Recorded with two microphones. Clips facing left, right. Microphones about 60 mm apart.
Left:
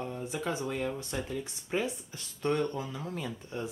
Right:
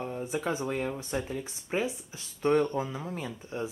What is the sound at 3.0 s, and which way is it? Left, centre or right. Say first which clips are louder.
Speech: right 1 dB; centre.